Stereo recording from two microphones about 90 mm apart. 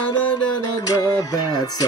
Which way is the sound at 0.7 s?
40° left (ahead or behind).